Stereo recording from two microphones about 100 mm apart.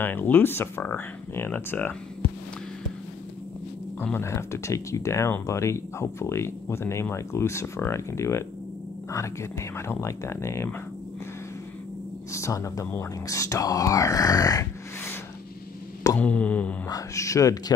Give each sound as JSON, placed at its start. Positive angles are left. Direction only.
{"t": 0.0, "sound": "speech", "side_deg": 20}
{"t": 4.0, "sound": "speech", "side_deg": 25}
{"t": 12.3, "sound": "speech", "side_deg": 30}
{"t": 16.2, "sound": "a sound", "side_deg": 15}
{"t": 16.9, "sound": "speech", "side_deg": 35}